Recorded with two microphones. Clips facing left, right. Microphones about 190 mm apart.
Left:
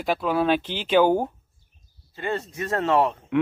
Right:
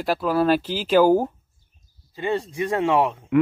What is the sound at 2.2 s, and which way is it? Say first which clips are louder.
Speech: right 4 dB; 15° right (ahead or behind).